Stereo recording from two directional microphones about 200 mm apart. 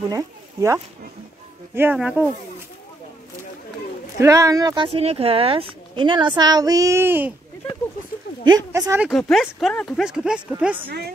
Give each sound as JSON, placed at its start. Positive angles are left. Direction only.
{"t": 0.1, "sound": "speech", "side_deg": -15}
{"t": 1.8, "sound": "speech", "side_deg": -5}
{"t": 4.2, "sound": "speech", "side_deg": -15}
{"t": 8.7, "sound": "speech", "side_deg": -15}
{"t": 9.0, "sound": "speech", "side_deg": 0}